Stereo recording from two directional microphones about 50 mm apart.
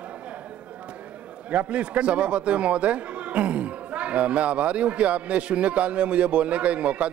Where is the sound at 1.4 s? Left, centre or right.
Right.